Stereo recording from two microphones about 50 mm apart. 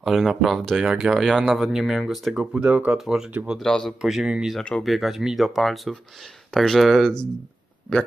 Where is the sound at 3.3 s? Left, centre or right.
Right.